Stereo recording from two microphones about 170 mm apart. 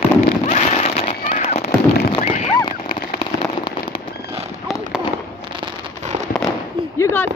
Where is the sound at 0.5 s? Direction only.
35° left (ahead or behind).